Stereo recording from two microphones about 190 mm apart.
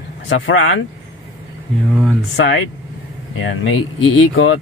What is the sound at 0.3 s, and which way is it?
Speech, 75° left (ahead or behind).